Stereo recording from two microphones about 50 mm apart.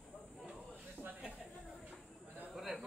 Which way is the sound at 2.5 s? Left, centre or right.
Centre.